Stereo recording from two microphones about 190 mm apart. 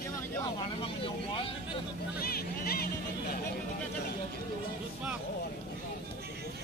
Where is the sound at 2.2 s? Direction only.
50° left (ahead or behind).